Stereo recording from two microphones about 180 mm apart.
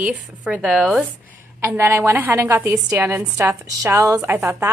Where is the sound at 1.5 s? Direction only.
15° right (ahead or behind).